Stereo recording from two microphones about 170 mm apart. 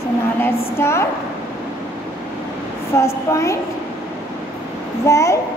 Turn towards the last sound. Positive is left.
turn(degrees=20)  # may be behind; listen again after turning